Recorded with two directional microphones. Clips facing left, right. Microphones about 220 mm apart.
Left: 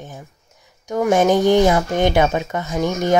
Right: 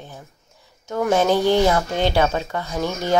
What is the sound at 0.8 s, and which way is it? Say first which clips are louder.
Speech: left 3 dB; 15° left (ahead or behind).